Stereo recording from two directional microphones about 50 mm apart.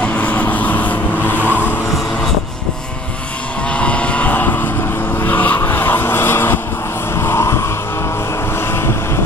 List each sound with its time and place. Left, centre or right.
0.0 s vehicle: left
3.7 s vehicle: left
7.2 s vehicle: left